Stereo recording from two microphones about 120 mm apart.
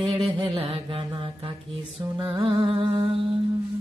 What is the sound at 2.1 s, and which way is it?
Music, 30° right (ahead or behind).